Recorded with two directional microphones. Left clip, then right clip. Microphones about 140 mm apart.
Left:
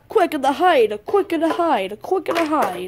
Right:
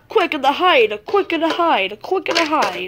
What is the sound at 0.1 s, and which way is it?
Speech, 30° left (ahead or behind).